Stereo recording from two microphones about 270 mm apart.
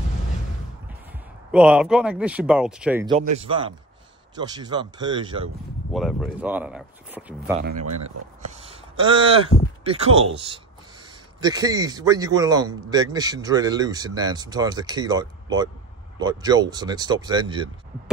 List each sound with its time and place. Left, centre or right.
1.5 s speech: centre
3.1 s a man's voice: right
5.9 s speech: centre
8.5 s a sound: right
9.8 s a man's voice: right